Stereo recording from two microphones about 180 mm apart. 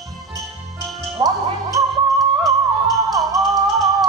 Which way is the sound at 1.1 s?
25° right (ahead or behind).